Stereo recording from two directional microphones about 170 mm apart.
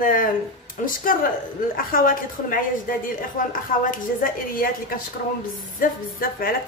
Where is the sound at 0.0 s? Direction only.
55° left (ahead or behind).